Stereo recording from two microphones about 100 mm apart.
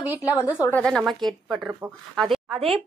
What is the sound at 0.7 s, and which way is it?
A woman's voice, 5° left (ahead or behind).